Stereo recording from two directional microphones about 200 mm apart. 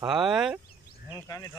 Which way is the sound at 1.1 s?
15° left (ahead or behind).